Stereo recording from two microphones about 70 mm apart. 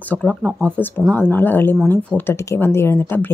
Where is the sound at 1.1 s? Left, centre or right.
Left.